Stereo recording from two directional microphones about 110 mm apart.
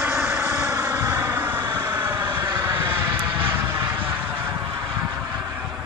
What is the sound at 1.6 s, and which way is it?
Vehicle, 40° right (ahead or behind).